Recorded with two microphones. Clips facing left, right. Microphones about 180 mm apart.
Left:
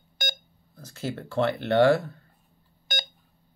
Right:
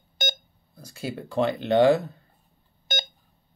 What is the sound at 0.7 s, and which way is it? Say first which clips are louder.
Speech: even; 10° right (ahead or behind).